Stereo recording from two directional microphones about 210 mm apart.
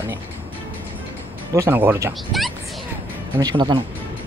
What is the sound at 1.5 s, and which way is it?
Speech, 10° right (ahead or behind).